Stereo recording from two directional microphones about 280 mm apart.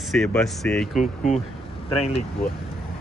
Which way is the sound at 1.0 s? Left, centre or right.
Left.